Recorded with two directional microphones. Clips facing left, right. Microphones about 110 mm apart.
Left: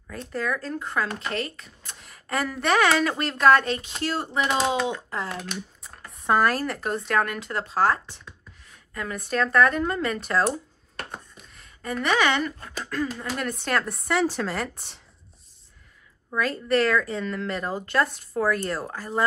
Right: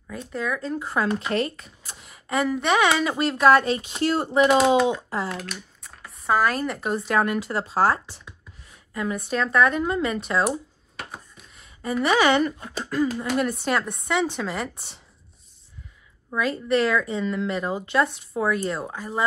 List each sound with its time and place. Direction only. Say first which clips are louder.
0.1 s speech: even; 5° right (ahead or behind)
1.3 s speech: right 6 dB; 40° right (ahead or behind)
1.8 s speech: right 1 dB; 5° right (ahead or behind)
11.0 s a sound: left 1 dB; 5° right (ahead or behind)
12.9 s speech: right 6 dB; 10° right (ahead or behind)
16.3 s speech: right 1 dB; 5° right (ahead or behind)